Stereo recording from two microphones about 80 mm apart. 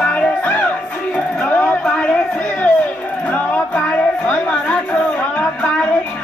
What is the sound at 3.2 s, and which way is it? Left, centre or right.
Music, centre.